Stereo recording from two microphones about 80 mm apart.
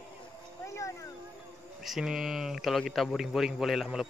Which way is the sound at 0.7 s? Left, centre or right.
Left.